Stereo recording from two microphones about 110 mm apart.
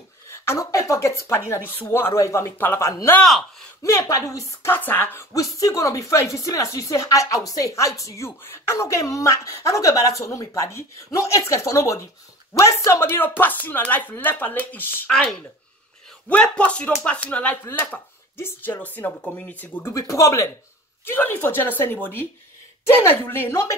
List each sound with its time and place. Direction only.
0.3 s speech: 25° left (ahead or behind)
3.2 s speech: centre (ahead or behind)
3.8 s speech: 30° left (ahead or behind)
4.7 s speech: 15° left (ahead or behind)
5.3 s speech: 30° left (ahead or behind)
15.0 s speech: 5° left (ahead or behind)
19.9 s speech: 30° left (ahead or behind)